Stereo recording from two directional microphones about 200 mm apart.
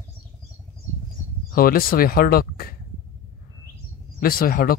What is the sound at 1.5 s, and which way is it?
Speech, 45° left (ahead or behind).